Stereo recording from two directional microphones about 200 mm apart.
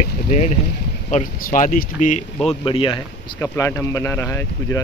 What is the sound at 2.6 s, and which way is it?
Speech, 25° left (ahead or behind).